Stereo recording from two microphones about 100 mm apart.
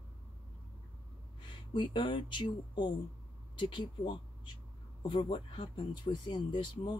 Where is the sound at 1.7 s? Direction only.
50° left (ahead or behind).